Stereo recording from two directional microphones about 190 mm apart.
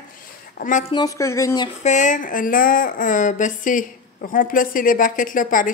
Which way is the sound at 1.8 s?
40° left (ahead or behind).